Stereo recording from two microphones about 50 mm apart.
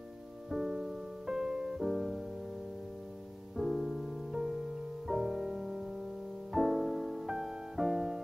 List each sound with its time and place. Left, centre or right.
0.5 s music: centre
3.5 s music: centre